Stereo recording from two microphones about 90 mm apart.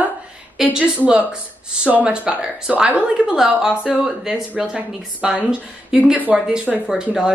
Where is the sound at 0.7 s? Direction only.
10° right (ahead or behind).